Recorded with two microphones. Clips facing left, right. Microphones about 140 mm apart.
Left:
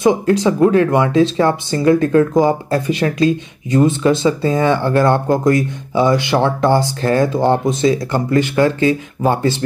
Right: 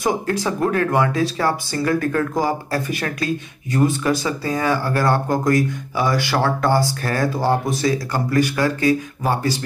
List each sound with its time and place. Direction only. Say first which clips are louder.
0.0 s speech: left 8 dB; 20° left (ahead or behind)